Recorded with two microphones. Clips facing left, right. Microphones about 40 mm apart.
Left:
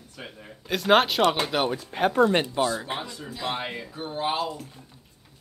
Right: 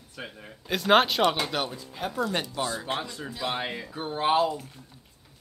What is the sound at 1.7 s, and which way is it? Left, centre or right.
Speech, left.